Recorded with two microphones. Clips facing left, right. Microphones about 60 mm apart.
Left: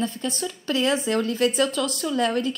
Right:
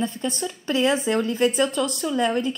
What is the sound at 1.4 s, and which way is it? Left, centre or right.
Speech, centre.